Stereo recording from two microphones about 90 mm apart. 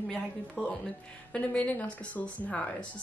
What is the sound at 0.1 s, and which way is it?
Speech, 5° left (ahead or behind).